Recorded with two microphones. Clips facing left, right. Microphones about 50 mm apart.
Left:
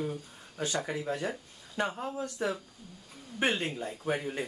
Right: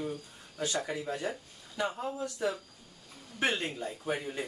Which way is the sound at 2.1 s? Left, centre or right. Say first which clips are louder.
Even; left.